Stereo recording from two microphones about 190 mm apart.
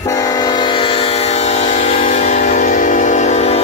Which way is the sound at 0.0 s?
20° left (ahead or behind).